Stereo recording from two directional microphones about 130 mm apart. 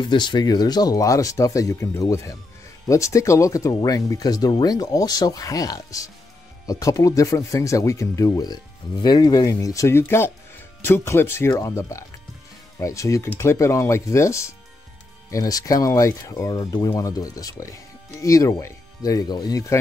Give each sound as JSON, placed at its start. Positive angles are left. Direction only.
{"t": 0.0, "sound": "speech", "side_deg": 35}